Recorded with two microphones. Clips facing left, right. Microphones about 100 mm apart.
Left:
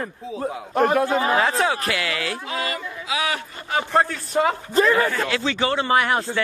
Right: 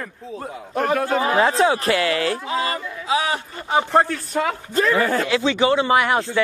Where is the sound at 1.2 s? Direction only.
25° right (ahead or behind).